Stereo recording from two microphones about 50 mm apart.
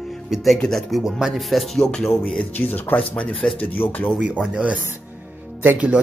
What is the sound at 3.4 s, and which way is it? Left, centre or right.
Speech, left.